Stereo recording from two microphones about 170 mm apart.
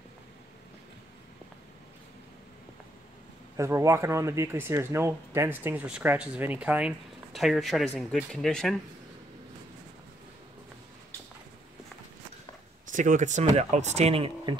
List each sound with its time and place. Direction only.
3.5 s speech: 15° right (ahead or behind); by 8.7 s centre (ahead or behind)
12.9 s speech: 50° right (ahead or behind); by 14.6 s 30° right (ahead or behind)